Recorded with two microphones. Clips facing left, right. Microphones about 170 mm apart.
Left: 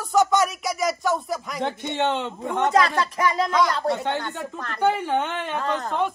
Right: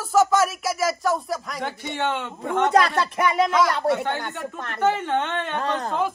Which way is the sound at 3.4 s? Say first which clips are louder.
Right 1 dB; centre (ahead or behind).